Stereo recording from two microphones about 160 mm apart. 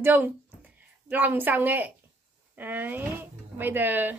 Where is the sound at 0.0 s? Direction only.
10° right (ahead or behind).